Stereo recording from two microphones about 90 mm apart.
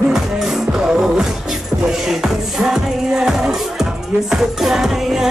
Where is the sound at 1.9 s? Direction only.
5° right (ahead or behind).